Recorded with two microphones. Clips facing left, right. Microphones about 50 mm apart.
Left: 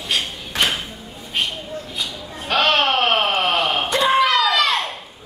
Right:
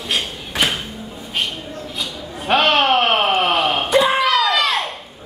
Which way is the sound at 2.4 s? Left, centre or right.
Centre.